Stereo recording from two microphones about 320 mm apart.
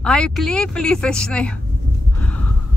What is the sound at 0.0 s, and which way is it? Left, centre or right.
Speech, centre.